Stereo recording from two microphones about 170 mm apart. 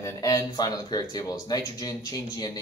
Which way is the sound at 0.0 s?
20° left (ahead or behind).